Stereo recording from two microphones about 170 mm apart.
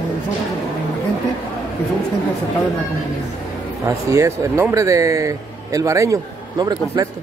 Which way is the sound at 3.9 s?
15° right (ahead or behind).